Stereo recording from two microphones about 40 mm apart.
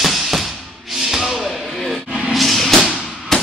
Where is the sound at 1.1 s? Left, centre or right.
Centre.